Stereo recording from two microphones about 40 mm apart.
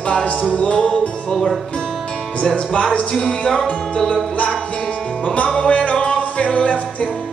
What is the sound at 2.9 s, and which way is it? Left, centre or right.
Music, centre.